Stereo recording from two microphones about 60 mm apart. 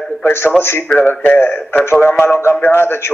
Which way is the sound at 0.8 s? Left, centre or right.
Left.